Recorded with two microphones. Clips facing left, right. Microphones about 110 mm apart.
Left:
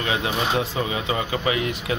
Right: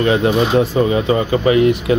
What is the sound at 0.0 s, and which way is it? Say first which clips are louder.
Speech: right 10 dB; 50° right (ahead or behind).